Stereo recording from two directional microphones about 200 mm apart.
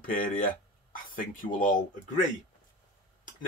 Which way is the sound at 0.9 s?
40° left (ahead or behind).